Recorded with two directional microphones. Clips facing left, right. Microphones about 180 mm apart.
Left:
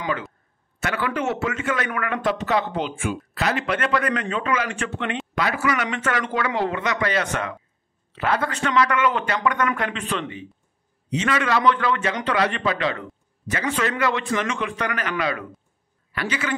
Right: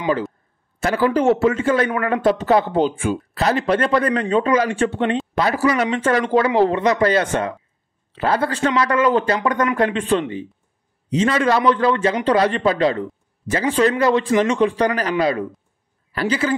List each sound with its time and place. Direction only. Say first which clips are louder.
0.7 s a man's voice: right 8 dB; 35° right (ahead or behind)